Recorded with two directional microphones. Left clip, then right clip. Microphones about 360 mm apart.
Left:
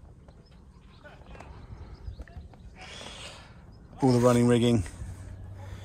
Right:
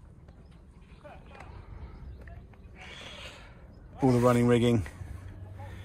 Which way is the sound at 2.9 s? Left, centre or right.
Centre.